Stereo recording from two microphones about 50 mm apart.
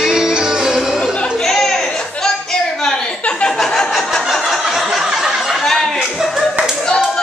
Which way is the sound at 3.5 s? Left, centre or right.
Centre.